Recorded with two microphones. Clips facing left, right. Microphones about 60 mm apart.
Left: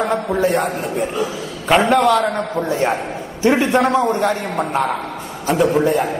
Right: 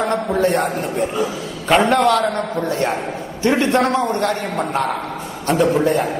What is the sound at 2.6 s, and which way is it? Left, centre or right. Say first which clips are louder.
Speech: left 2 dB; left.